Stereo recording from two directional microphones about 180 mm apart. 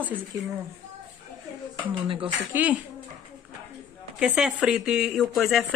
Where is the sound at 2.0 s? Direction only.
30° right (ahead or behind).